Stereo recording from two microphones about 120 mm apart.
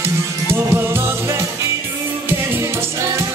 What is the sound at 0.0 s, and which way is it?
Music, 20° right (ahead or behind).